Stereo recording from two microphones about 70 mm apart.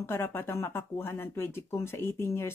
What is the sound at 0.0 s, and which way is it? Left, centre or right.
Speech, left.